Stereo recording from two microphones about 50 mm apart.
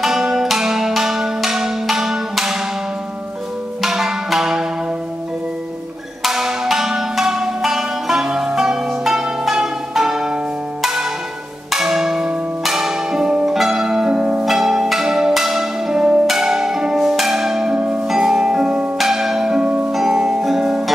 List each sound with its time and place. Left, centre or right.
0.0 s music: centre
3.8 s music: centre
6.2 s music: centre
11.7 s bell: centre
13.5 s music: centre
14.4 s music: centre
18.9 s bell: centre
19.6 s music: right
19.9 s music: centre